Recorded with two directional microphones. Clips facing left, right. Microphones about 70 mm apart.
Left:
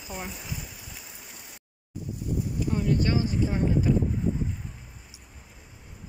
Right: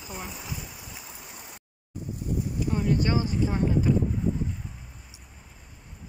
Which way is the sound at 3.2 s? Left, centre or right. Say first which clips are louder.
Even; centre.